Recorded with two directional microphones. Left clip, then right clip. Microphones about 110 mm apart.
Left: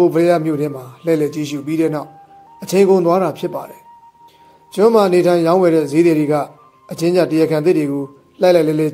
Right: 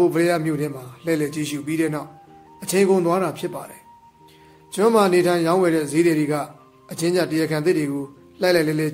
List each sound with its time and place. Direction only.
0.0 s a man's voice: 30° left (ahead or behind)
4.7 s a man's voice: 30° left (ahead or behind)